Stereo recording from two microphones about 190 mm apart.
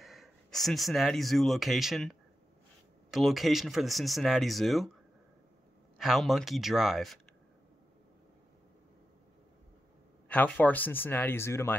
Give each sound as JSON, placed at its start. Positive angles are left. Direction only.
{"t": 0.0, "sound": "speech", "side_deg": 0}
{"t": 5.9, "sound": "speech", "side_deg": 0}
{"t": 10.2, "sound": "speech", "side_deg": 10}